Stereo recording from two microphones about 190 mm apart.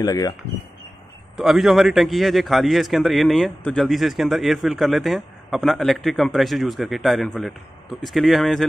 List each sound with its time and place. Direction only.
0.0 s speech: 20° left (ahead or behind)
1.3 s a man's voice: centre (ahead or behind)